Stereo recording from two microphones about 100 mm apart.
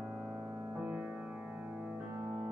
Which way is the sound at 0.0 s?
20° right (ahead or behind).